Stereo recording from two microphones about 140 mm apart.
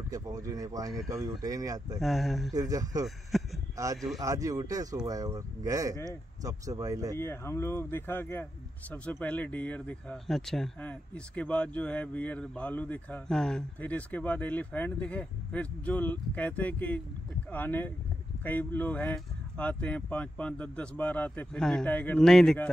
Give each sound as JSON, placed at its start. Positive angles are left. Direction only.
{"t": 0.1, "sound": "speech", "side_deg": -25}
{"t": 2.0, "sound": "speech", "side_deg": 0}
{"t": 2.5, "sound": "speech", "side_deg": -25}
{"t": 3.3, "sound": "a sound", "side_deg": 0}
{"t": 3.7, "sound": "speech", "side_deg": -25}
{"t": 7.2, "sound": "speech", "side_deg": 20}